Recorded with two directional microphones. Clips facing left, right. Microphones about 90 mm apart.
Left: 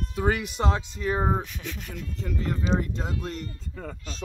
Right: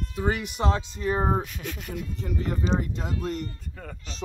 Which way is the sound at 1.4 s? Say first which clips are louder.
Right 1 dB; centre (ahead or behind).